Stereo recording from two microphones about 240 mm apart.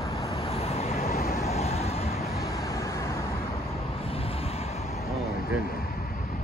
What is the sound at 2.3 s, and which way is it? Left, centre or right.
Vehicle, centre.